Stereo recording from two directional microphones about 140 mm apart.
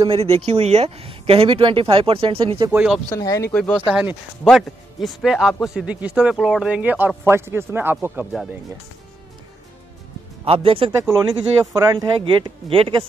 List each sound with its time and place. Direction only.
0.1 s speech: 45° right (ahead or behind)
2.7 s a man's voice: 10° right (ahead or behind)
3.1 s speech: 25° left (ahead or behind)
3.9 s a man's voice: 15° right (ahead or behind)
4.5 s a man's voice: centre (ahead or behind)
10.4 s speech: 40° right (ahead or behind)
11.1 s speech: 20° right (ahead or behind)
12.6 s speech: 40° right (ahead or behind)